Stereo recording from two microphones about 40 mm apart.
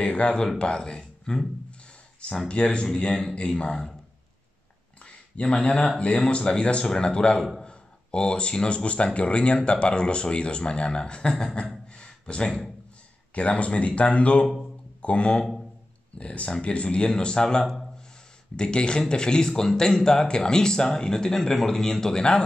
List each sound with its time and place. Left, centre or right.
0.0 s speech: left
0.6 s speech: left
2.4 s speech: left
5.0 s speech: left
11.9 s a sound: left
13.3 s a man's voice: left